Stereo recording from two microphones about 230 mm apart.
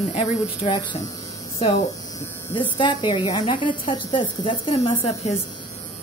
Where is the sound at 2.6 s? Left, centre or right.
Left.